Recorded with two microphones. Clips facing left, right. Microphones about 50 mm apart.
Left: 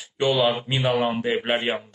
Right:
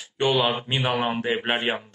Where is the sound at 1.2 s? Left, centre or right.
Centre.